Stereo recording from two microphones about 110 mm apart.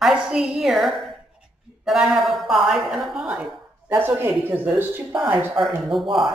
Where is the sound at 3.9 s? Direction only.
20° right (ahead or behind).